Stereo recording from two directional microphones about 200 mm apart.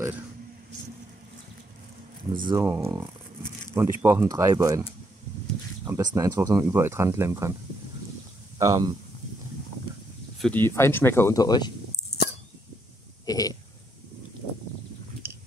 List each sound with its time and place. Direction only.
2.5 s speech: 15° right (ahead or behind)
5.9 s speech: 15° right (ahead or behind)
8.5 s speech: 20° right (ahead or behind)
10.4 s speech: 10° left (ahead or behind)
13.2 s burping: 20° left (ahead or behind)